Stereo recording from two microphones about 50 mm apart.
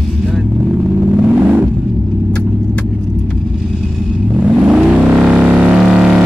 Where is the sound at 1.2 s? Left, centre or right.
Right.